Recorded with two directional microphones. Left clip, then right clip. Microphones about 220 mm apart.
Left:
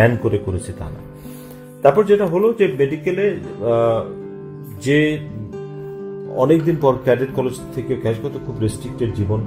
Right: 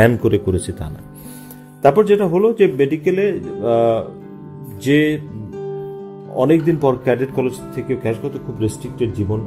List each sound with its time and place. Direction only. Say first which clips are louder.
0.0 s speech: right 2 dB; 40° right (ahead or behind)
1.8 s speech: right 1 dB; 40° right (ahead or behind)
6.3 s speech: right 1 dB; 35° right (ahead or behind)